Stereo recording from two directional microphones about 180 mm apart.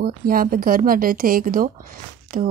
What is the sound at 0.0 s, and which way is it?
Speech, 55° right (ahead or behind).